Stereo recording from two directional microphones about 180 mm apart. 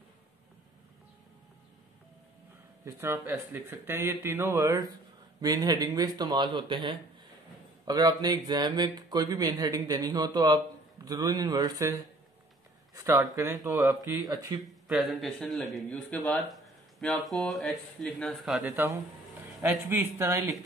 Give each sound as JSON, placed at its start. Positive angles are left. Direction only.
{"t": 2.8, "sound": "speech", "side_deg": -15}
{"t": 12.9, "sound": "speech", "side_deg": -15}
{"t": 14.9, "sound": "speech", "side_deg": 0}